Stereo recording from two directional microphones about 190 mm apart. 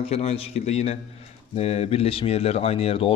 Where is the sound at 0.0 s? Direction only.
35° left (ahead or behind).